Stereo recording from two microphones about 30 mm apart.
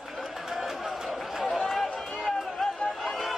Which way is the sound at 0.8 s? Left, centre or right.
Centre.